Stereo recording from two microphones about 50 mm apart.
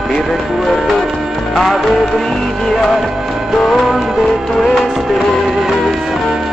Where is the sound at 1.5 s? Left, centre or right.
Centre.